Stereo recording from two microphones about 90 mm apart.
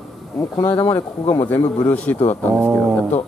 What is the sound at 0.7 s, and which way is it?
A man's voice, 20° left (ahead or behind).